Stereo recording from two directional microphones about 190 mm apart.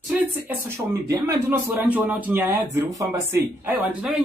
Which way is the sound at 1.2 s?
10° right (ahead or behind).